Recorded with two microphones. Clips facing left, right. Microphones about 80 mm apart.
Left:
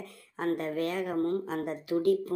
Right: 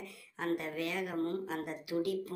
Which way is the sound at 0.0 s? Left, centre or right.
Left.